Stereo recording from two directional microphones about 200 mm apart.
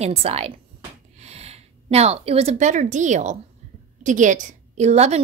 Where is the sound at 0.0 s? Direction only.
30° right (ahead or behind).